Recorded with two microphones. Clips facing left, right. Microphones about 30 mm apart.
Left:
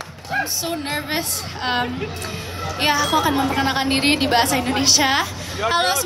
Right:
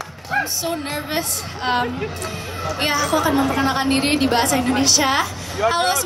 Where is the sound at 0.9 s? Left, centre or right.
Left.